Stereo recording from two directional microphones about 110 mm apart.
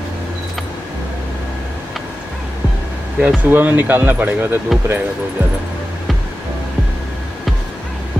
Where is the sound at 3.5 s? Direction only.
15° right (ahead or behind).